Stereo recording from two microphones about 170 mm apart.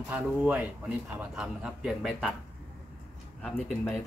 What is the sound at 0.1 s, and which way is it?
A man's voice, 10° right (ahead or behind).